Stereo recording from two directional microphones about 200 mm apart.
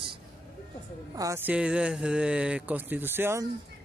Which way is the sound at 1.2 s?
10° right (ahead or behind).